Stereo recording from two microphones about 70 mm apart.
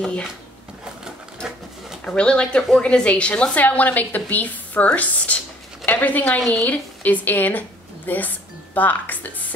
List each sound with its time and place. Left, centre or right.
2.0 s a woman's voice: centre